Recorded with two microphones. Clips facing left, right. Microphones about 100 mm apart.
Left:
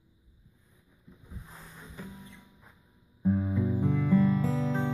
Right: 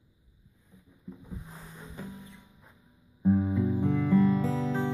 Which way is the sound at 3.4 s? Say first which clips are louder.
Right 2 dB; 5° right (ahead or behind).